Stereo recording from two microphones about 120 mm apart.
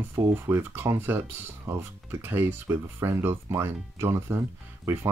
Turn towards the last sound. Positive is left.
turn(degrees=-20)  # may be behind; listen again after turning